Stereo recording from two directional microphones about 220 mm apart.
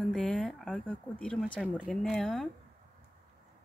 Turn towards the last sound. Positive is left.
turn(degrees=5)  # may be behind; listen again after turning